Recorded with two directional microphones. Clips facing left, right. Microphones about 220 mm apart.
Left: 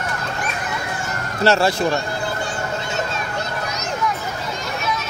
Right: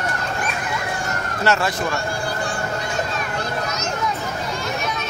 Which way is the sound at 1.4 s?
30° left (ahead or behind).